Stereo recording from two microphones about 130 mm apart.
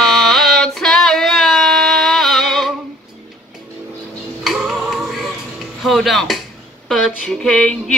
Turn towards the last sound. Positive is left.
turn(degrees=5)  # may be behind; listen again after turning